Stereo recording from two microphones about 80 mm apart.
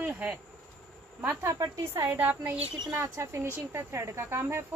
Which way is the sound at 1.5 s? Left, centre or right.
Right.